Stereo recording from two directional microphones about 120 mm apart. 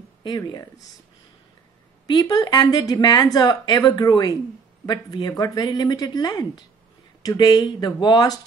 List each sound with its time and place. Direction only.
2.0 s a woman's voice: 35° left (ahead or behind)